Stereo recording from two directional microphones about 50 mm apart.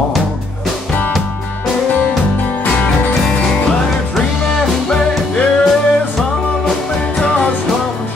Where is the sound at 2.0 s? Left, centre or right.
Left.